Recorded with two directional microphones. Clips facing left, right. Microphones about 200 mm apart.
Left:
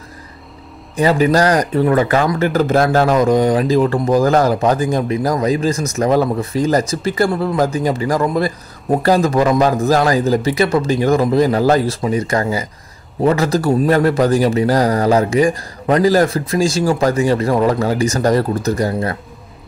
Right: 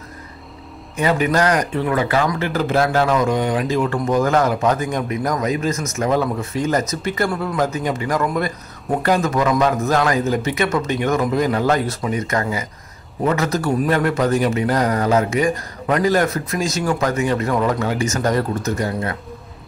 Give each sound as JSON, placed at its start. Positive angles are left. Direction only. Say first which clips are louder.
{"t": 0.9, "sound": "speech", "louder": "left 5 dB", "side_deg": 35}